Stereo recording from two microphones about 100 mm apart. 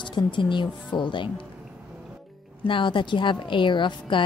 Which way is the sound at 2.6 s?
55° left (ahead or behind).